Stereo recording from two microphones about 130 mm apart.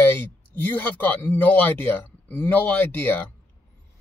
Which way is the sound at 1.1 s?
15° left (ahead or behind).